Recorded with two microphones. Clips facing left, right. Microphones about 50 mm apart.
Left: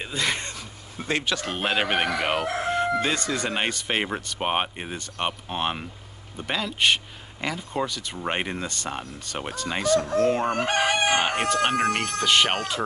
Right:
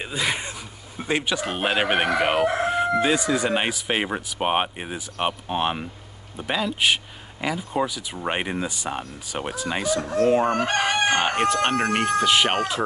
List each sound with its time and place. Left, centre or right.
0.0 s speech: centre